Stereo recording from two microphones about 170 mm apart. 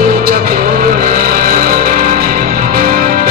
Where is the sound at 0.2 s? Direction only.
55° right (ahead or behind).